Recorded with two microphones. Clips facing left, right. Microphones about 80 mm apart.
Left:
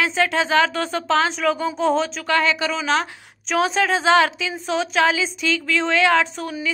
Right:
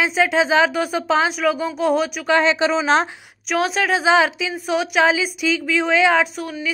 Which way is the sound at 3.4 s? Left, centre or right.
Centre.